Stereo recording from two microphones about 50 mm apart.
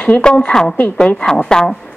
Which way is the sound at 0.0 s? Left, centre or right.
Centre.